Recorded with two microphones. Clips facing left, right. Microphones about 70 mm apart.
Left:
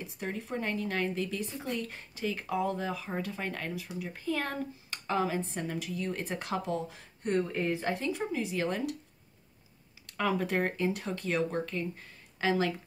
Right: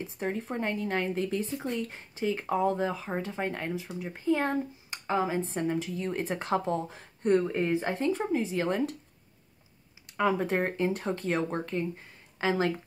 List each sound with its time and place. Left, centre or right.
0.0 s speech: right
10.0 s speech: right